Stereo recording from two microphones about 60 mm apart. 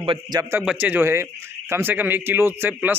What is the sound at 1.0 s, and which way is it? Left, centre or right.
Speech, right.